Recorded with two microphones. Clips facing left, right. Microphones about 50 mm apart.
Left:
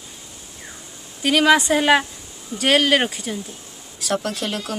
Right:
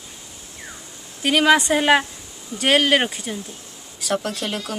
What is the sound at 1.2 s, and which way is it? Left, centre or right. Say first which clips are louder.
Speech: even; centre.